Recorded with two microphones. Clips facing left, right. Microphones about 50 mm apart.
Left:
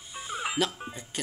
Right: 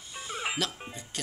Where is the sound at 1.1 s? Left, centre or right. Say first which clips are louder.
Left 3 dB; centre.